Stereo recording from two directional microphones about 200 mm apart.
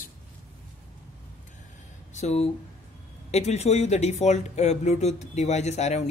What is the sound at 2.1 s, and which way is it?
Speech, 35° left (ahead or behind).